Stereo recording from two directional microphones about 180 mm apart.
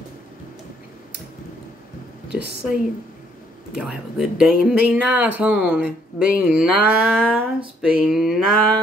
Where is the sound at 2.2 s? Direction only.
70° right (ahead or behind).